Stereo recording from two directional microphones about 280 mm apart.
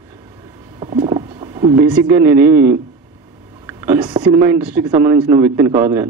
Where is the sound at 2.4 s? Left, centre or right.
Right.